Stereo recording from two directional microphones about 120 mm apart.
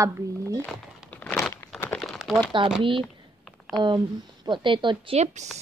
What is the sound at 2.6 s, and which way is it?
Speech, 40° right (ahead or behind).